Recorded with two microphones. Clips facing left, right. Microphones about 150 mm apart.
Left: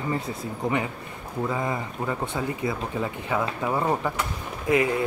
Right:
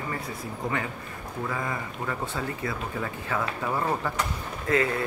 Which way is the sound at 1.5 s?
20° left (ahead or behind).